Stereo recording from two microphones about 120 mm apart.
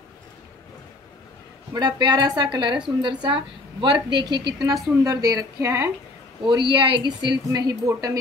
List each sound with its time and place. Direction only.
1.7 s a woman's voice: 35° right (ahead or behind)
6.4 s a woman's voice: 40° right (ahead or behind)